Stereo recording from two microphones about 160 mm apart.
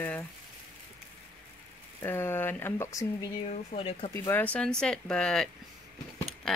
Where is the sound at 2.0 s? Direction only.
15° left (ahead or behind).